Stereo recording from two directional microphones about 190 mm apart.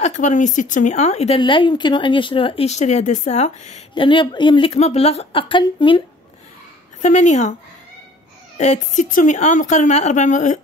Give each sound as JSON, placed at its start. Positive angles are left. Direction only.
{"t": 0.0, "sound": "a woman's voice", "side_deg": 40}
{"t": 1.4, "sound": "speech", "side_deg": 25}
{"t": 7.0, "sound": "a woman's voice", "side_deg": 40}
{"t": 8.5, "sound": "a woman's voice", "side_deg": 40}